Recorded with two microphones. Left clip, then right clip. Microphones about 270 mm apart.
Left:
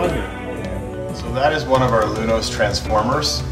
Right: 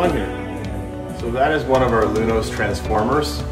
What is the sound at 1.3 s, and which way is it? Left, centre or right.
Speech, centre.